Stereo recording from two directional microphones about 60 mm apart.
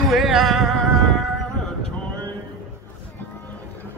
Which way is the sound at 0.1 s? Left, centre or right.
Centre.